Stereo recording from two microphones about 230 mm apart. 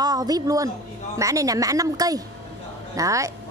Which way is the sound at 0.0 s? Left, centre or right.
Centre.